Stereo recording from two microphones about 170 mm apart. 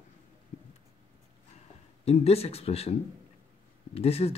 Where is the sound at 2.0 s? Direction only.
35° left (ahead or behind).